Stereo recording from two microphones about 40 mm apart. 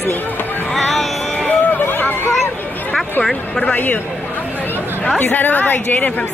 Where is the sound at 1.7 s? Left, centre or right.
Left.